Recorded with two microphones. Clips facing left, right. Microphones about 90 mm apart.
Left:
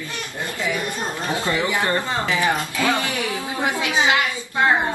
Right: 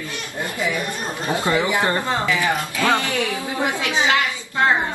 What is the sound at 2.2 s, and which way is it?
Speech, 20° left (ahead or behind).